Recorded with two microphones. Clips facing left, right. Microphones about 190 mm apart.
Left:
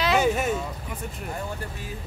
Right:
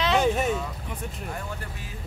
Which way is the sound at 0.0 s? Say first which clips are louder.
Even; 5° left (ahead or behind).